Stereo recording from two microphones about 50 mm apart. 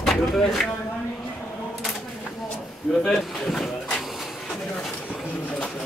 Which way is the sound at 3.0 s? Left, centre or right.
Centre.